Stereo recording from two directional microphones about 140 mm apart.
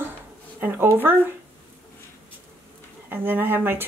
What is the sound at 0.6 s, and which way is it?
Speech, 15° right (ahead or behind).